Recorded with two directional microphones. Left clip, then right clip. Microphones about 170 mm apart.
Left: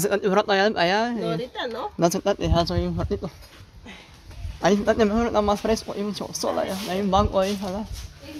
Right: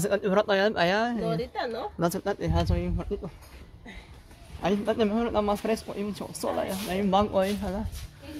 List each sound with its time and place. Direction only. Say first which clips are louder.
0.0 s speech: left 3 dB; 10° left (ahead or behind)
2.0 s a man's voice: left 8 dB; 15° left (ahead or behind)
4.6 s a man's voice: left 6 dB; 35° left (ahead or behind); by 7.8 s centre (ahead or behind)